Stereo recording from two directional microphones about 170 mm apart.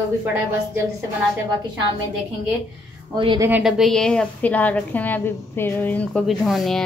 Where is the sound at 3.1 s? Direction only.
25° right (ahead or behind).